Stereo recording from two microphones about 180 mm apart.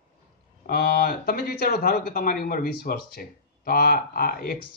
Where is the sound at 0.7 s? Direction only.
60° left (ahead or behind).